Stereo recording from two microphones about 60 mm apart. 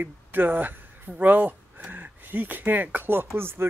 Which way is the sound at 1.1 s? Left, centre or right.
Right.